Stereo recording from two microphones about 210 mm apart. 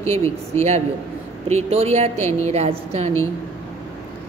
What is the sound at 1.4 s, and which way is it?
A woman's voice, 30° right (ahead or behind).